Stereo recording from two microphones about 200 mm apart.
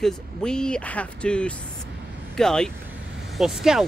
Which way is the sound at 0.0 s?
5° left (ahead or behind).